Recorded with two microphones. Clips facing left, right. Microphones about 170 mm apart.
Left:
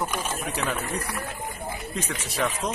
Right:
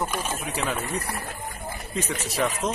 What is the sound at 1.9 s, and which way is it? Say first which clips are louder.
Speech: right 5 dB; centre (ahead or behind).